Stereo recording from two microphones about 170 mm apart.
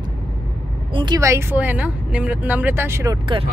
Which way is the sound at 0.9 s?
25° right (ahead or behind).